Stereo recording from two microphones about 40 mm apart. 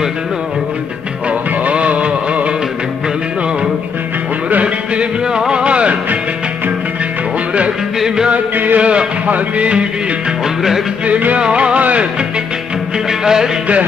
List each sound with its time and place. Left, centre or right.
1.6 s music: right
5.5 s music: right
8.7 s music: right
11.1 s music: right
11.3 s music: right
13.2 s music: centre